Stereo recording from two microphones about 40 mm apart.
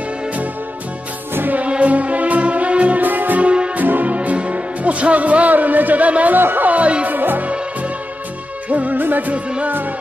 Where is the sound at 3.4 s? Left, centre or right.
Right.